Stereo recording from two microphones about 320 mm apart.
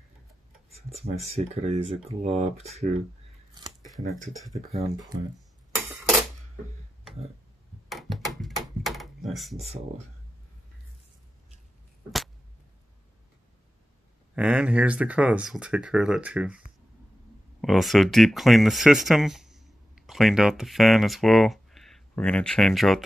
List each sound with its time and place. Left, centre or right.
0.8 s speech: centre
3.8 s speech: centre
4.7 s speech: centre
7.9 s a sound: centre
14.3 s speech: centre